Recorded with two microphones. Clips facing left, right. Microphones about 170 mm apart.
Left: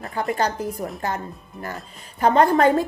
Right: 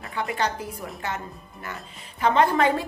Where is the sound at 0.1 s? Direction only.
40° left (ahead or behind).